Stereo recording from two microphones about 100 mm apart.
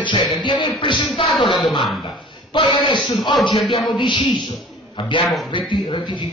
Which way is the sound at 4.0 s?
55° left (ahead or behind).